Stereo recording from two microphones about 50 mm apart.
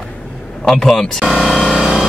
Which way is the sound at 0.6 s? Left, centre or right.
Centre.